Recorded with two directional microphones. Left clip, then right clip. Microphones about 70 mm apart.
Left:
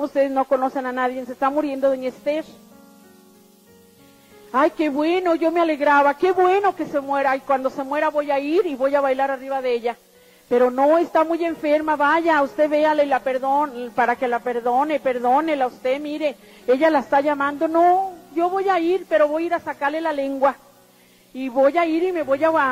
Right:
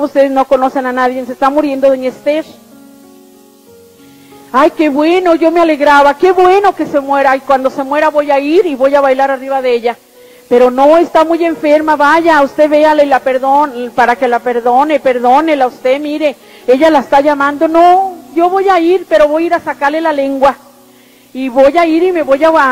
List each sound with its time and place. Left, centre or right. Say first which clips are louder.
0.0 s a woman's voice: right 10 dB; left
4.5 s a woman's voice: right 10 dB; left
15.8 s a woman's voice: right 11 dB; left